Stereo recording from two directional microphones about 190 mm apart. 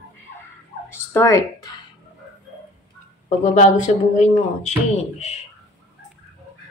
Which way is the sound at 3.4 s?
40° left (ahead or behind).